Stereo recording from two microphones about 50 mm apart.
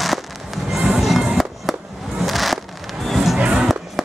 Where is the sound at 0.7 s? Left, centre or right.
Centre.